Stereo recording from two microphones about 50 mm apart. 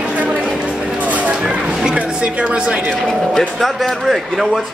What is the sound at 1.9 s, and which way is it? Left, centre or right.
Speech, right.